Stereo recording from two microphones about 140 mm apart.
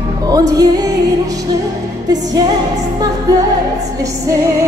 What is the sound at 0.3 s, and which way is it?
Music, 25° right (ahead or behind).